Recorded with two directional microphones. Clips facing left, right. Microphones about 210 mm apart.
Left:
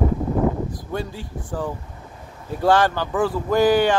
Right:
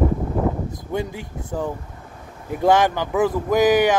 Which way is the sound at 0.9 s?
20° right (ahead or behind).